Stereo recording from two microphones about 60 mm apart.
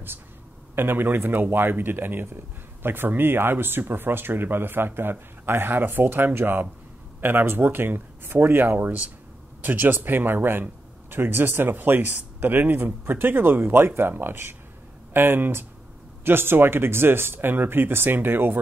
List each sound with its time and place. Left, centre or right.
0.7 s a man's voice: right